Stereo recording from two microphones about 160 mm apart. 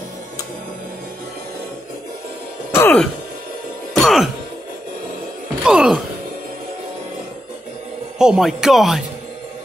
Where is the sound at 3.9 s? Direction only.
Centre (ahead or behind).